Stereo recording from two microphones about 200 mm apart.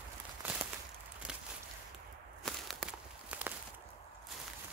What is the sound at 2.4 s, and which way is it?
Walk, centre (ahead or behind).